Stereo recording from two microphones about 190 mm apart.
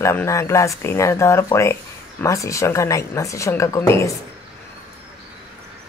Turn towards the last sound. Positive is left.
turn(degrees=15)  # may be behind; listen again after turning